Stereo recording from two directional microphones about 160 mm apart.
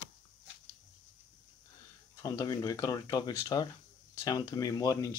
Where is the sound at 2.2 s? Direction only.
20° left (ahead or behind).